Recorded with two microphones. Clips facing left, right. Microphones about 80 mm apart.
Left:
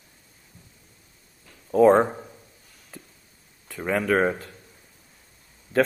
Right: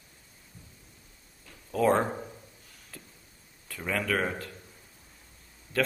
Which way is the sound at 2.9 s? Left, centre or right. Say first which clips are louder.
Left 5 dB; centre.